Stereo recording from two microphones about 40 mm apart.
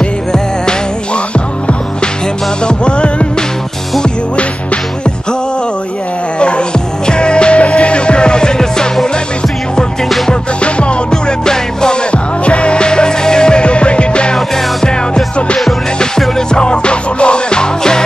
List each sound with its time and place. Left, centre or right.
2.6 s music: left
7.1 s music: left
10.0 s music: centre
10.6 s music: left
12.1 s music: left
14.3 s music: centre
15.3 s music: left